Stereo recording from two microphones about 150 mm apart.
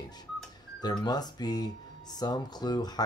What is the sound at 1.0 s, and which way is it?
Speech, 25° left (ahead or behind).